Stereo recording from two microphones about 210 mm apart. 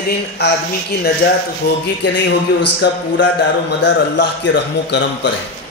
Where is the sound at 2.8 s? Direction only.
55° left (ahead or behind).